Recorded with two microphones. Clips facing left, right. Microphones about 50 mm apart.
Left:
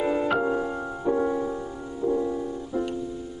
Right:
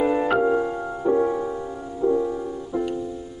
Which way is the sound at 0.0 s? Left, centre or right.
Centre.